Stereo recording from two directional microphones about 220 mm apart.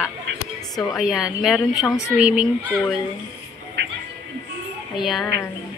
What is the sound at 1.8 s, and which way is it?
Speech, 15° left (ahead or behind).